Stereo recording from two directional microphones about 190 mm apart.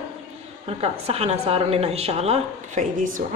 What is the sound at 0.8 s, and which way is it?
A woman's voice, 35° right (ahead or behind).